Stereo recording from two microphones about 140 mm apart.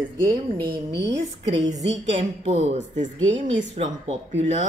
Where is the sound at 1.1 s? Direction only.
50° right (ahead or behind).